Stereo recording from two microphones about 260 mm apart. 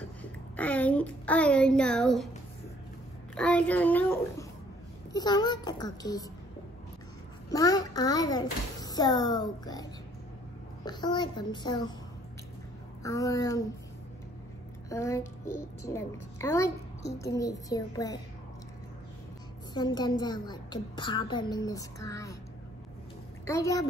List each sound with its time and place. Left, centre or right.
0.6 s a child's voice: centre
3.3 s a child's voice: centre
7.4 s a woman's voice: centre
10.9 s a woman's voice: centre
13.0 s a woman's voice: centre
14.9 s a child's voice: centre
19.7 s a woman's voice: centre
23.4 s a woman's voice: centre